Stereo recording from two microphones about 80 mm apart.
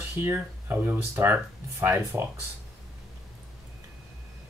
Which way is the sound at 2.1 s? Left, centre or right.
Right.